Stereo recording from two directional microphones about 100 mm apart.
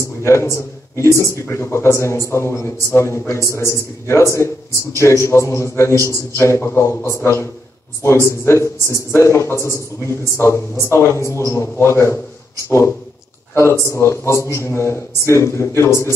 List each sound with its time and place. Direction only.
0.2 s a man's voice: 25° left (ahead or behind)